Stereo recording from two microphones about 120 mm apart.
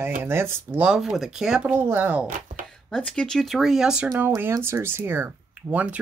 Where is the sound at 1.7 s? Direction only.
15° right (ahead or behind).